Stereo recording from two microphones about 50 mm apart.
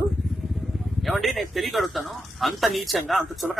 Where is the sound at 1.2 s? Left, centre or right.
Centre.